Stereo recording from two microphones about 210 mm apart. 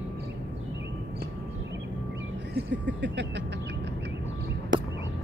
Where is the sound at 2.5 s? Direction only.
55° right (ahead or behind).